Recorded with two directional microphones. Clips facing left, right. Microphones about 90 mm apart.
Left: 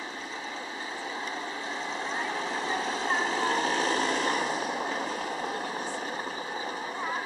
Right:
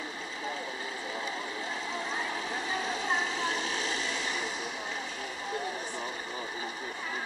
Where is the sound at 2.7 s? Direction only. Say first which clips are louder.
Left 1 dB; 35° left (ahead or behind).